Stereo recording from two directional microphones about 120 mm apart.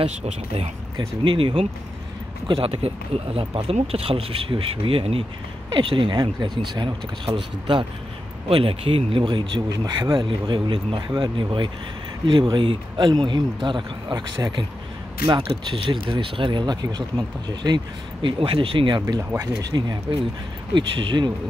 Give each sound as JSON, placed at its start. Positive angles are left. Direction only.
{"t": 0.0, "sound": "speech", "side_deg": -55}
{"t": 0.9, "sound": "speech", "side_deg": -45}
{"t": 2.7, "sound": "speech", "side_deg": -55}
{"t": 9.2, "sound": "speech", "side_deg": -40}